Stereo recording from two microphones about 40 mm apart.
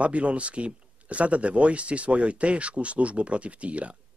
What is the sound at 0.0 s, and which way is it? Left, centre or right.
Speech, right.